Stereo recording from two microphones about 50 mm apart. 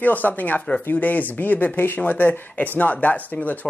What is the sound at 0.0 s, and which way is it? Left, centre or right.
Speech, left.